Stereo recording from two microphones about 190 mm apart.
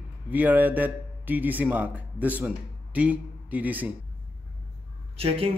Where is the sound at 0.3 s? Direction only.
10° right (ahead or behind).